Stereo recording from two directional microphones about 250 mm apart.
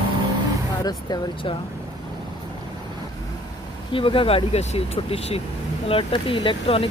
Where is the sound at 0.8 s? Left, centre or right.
Centre.